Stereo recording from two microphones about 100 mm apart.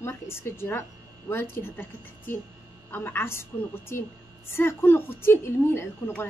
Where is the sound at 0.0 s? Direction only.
25° left (ahead or behind).